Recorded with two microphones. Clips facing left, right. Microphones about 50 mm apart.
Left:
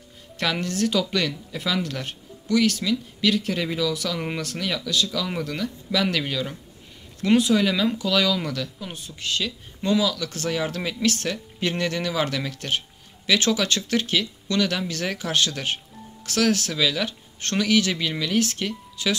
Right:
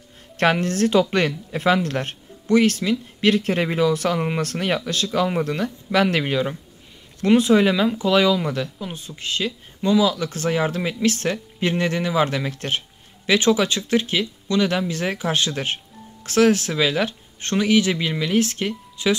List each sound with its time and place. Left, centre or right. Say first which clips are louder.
0.4 s speech: right 6 dB; right